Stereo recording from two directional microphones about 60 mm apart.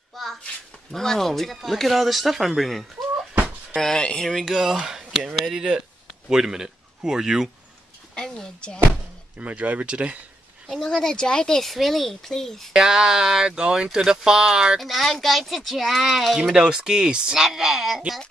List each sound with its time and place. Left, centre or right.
0.2 s a child's voice: centre
3.7 s speech: centre
4.3 s speech: centre
8.1 s speech: centre
9.4 s speech: right
10.7 s speech: centre
12.7 s speech: centre
14.8 s speech: centre
16.5 s speech: centre